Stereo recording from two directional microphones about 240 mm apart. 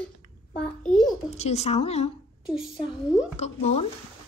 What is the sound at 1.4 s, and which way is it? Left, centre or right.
Speech, left.